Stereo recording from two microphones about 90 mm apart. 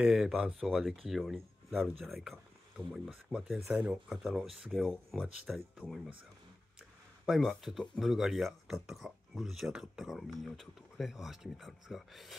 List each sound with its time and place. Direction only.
0.0 s speech: 5° right (ahead or behind)
7.2 s speech: centre (ahead or behind)